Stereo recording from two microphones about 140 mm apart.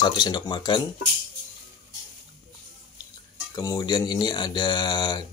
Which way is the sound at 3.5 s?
25° left (ahead or behind).